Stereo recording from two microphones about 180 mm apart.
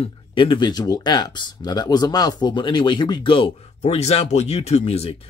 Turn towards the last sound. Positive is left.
turn(degrees=35)  # may be behind; listen again after turning